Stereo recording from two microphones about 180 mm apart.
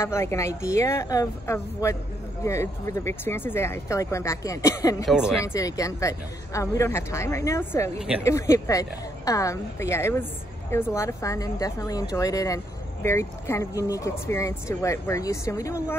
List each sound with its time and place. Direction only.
0.0 s speech: 15° left (ahead or behind)
5.0 s speech: 5° right (ahead or behind)
5.4 s speech: 20° left (ahead or behind)